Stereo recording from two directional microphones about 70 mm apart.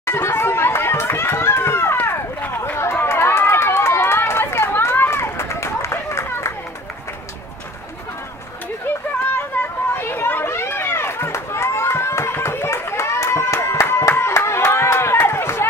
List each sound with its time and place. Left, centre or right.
0.0 s run: left
9.6 s chatter: left
12.4 s clapping: left